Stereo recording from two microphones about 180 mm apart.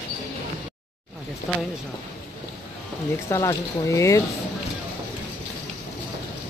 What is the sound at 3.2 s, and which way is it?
Speech, 15° left (ahead or behind).